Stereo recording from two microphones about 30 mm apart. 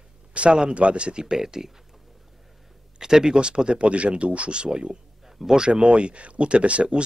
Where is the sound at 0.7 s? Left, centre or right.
Right.